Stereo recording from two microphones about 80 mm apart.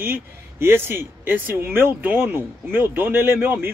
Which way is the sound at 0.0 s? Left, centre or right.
Right.